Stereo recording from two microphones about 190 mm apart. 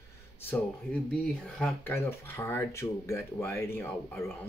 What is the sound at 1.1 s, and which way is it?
Speech, 10° left (ahead or behind).